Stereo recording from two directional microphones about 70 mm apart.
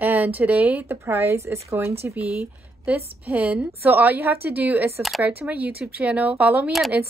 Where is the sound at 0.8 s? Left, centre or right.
Right.